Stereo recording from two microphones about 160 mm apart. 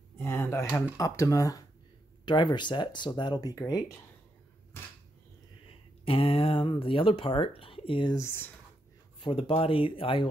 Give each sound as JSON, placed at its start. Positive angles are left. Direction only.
{"t": 0.2, "sound": "a sound", "side_deg": 15}
{"t": 0.9, "sound": "speech", "side_deg": 20}
{"t": 6.0, "sound": "speech", "side_deg": 35}
{"t": 8.2, "sound": "speech", "side_deg": 15}
{"t": 9.2, "sound": "speech", "side_deg": 35}